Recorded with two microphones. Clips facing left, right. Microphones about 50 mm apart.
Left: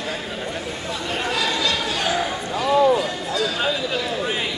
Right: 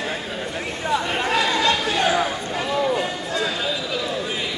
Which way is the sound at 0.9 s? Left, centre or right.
Right.